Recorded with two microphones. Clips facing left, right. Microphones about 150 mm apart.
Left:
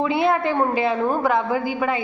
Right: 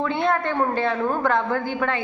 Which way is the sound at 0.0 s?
10° left (ahead or behind).